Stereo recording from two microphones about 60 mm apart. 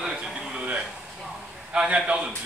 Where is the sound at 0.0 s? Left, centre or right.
Centre.